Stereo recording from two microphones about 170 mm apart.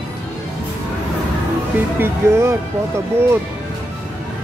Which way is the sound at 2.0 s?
15° right (ahead or behind).